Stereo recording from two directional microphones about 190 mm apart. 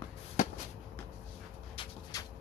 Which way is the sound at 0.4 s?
40° left (ahead or behind).